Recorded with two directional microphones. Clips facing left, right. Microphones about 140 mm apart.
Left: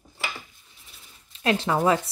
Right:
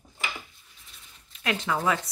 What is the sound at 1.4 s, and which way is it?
Speech, 30° left (ahead or behind).